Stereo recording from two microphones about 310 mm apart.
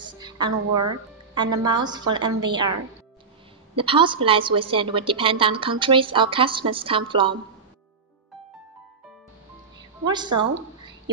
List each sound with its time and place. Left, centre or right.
0.0 s music: centre
1.3 s a woman's voice: centre
3.7 s a woman's voice: centre
10.0 s a woman's voice: centre